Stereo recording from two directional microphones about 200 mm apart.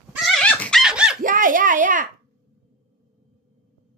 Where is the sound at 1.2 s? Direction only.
40° right (ahead or behind).